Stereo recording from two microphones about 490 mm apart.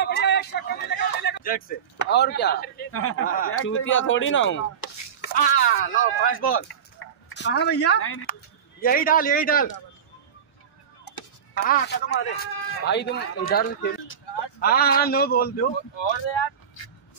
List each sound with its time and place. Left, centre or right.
0.0 s a sound: centre
2.0 s a man's voice: centre
11.5 s a man's voice: centre
15.9 s speech: left